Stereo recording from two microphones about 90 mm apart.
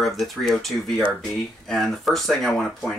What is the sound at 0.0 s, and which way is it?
Speech, centre (ahead or behind).